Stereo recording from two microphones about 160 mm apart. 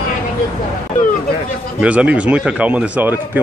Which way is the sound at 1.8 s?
10° right (ahead or behind).